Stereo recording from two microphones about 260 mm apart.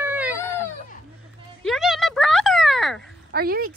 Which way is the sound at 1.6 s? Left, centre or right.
Centre.